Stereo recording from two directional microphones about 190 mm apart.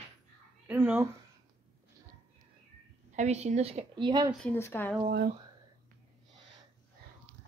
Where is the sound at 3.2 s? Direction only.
35° right (ahead or behind).